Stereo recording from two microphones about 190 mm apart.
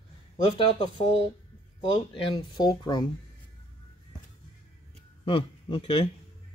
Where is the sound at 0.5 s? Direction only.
30° left (ahead or behind).